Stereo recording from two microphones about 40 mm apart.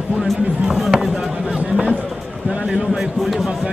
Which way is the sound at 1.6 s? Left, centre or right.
Right.